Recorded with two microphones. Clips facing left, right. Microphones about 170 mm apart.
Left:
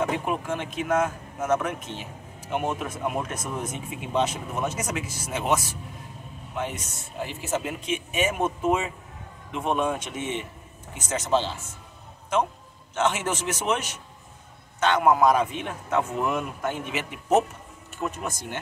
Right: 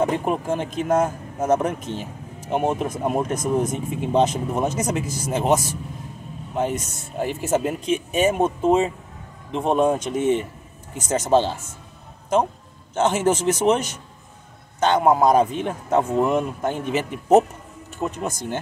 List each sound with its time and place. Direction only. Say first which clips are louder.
0.0 s speech: right 5 dB; 35° right (ahead or behind)
12.9 s speech: right 6 dB; 35° right (ahead or behind)
14.8 s speech: right 3 dB; 35° right (ahead or behind)
18.0 s speech: right 4 dB; 25° right (ahead or behind)